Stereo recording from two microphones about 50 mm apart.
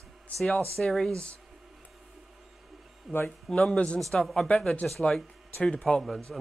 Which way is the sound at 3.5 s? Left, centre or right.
Centre.